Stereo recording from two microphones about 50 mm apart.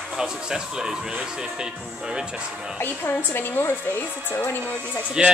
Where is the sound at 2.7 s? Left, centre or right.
Left.